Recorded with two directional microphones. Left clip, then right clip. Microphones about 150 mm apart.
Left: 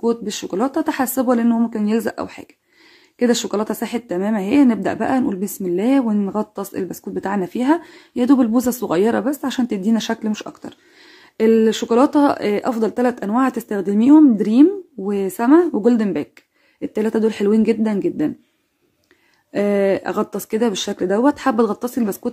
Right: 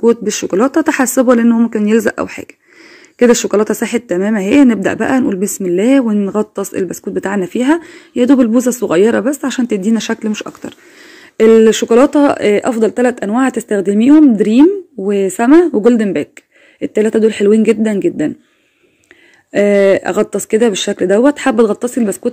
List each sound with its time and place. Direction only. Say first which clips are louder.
0.0 s speech: right 9 dB; 20° right (ahead or behind)
19.5 s speech: right 8 dB; 15° right (ahead or behind)